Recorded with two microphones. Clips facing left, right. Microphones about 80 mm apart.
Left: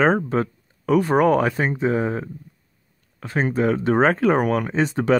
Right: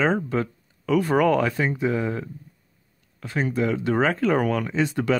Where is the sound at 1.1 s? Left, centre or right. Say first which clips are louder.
Left 1 dB; left.